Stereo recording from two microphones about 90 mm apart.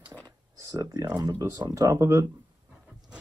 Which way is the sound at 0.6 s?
45° right (ahead or behind).